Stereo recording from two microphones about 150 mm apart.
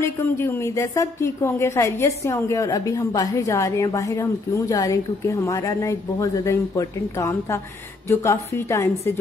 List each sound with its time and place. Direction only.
0.0 s a woman's voice: 15° left (ahead or behind)